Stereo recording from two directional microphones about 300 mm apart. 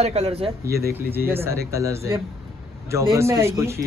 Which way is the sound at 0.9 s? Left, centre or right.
Centre.